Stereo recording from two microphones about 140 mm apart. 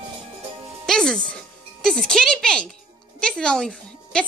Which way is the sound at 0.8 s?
5° left (ahead or behind).